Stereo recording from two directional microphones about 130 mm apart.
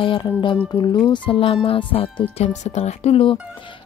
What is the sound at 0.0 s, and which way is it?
A woman's voice, 40° left (ahead or behind).